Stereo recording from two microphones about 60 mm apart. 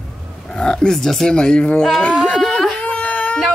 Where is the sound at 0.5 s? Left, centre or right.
Centre.